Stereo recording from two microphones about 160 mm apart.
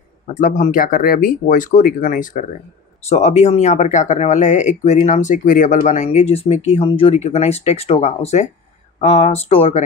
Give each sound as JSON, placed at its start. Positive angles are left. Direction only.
{"t": 0.4, "sound": "speech", "side_deg": 50}
{"t": 3.0, "sound": "speech", "side_deg": 45}